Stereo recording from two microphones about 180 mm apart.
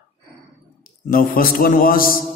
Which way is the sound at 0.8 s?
50° left (ahead or behind).